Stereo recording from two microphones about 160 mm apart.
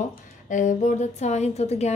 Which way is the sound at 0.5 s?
50° left (ahead or behind).